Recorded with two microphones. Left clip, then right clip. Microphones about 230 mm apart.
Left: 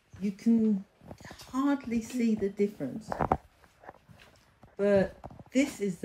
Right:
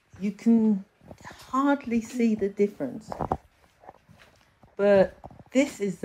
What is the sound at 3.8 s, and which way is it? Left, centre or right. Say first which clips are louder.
Walk: right 1 dB; right.